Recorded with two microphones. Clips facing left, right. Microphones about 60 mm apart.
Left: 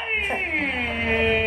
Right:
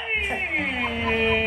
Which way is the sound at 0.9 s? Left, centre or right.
Left.